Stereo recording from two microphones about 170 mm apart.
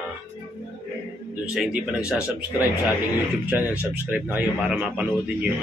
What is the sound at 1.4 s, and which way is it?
Speech, 5° right (ahead or behind).